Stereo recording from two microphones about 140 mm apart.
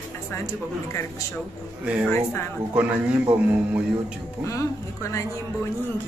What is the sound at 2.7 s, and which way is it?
Speech, 10° right (ahead or behind).